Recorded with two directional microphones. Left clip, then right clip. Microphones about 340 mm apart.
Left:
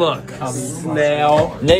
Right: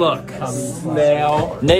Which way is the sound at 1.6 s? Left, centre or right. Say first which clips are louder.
Even; centre.